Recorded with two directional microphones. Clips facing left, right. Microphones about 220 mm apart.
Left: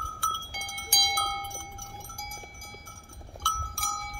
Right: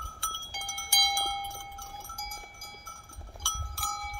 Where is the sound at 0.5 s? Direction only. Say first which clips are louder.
Left 1 dB; 20° left (ahead or behind).